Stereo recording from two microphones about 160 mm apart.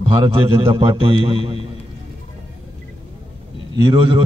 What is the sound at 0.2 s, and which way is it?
A man's voice, 35° right (ahead or behind).